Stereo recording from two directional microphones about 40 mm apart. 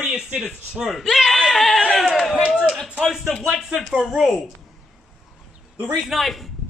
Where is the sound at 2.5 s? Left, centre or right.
Centre.